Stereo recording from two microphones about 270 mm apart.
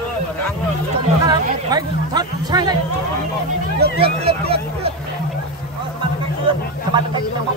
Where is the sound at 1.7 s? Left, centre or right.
Centre.